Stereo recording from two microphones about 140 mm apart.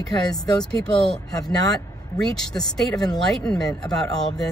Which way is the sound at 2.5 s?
20° left (ahead or behind).